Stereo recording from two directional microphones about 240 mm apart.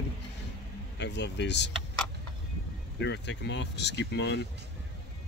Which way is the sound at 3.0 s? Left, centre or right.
Left.